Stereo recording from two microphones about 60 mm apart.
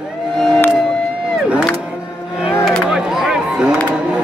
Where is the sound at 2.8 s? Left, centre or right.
Centre.